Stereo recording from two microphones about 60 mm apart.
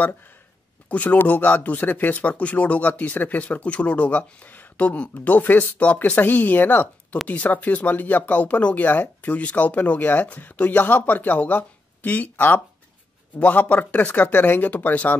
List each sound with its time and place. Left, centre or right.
0.8 s speech: left